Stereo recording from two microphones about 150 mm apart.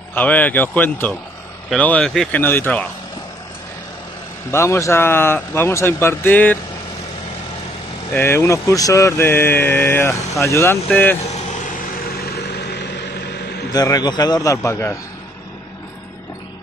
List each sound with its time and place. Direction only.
0.1 s speech: 10° left (ahead or behind)
4.5 s speech: 20° left (ahead or behind)
8.1 s speech: 15° left (ahead or behind)
12.3 s vehicle: 90° left
13.7 s a man's voice: 25° left (ahead or behind)